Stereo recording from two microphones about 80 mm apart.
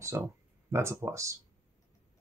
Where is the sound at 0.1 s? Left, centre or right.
Right.